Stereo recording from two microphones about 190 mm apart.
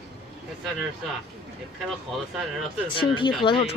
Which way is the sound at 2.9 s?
25° left (ahead or behind).